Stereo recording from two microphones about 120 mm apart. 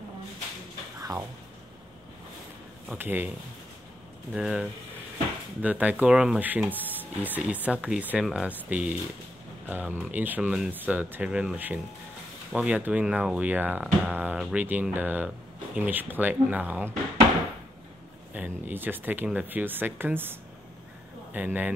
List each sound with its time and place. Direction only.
0.9 s a sound: 30° right (ahead or behind)
2.9 s speech: 15° right (ahead or behind)
4.3 s speech: 5° right (ahead or behind)
18.3 s speech: 15° right (ahead or behind)